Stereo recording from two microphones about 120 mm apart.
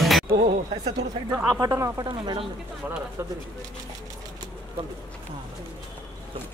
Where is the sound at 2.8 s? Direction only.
15° right (ahead or behind).